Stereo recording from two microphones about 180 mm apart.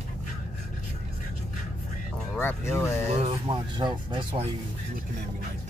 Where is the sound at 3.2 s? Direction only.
35° right (ahead or behind).